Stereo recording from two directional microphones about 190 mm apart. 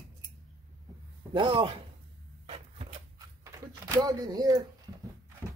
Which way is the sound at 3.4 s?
20° right (ahead or behind).